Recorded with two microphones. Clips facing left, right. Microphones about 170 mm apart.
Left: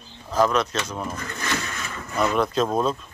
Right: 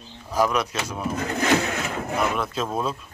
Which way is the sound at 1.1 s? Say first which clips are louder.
Right 8 dB; 60° right (ahead or behind).